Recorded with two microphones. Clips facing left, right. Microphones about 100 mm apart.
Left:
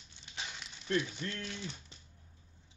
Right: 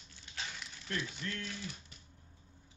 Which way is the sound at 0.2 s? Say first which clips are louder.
Even; 20° left (ahead or behind).